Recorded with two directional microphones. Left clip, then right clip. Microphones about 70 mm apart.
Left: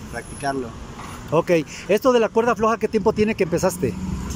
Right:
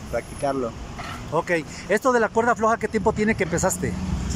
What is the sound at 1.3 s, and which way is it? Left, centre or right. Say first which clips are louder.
Speech: left 5 dB; left.